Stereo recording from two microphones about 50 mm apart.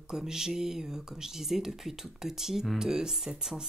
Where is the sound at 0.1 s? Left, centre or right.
Centre.